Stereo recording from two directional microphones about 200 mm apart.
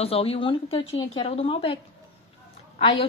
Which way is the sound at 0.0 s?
30° left (ahead or behind).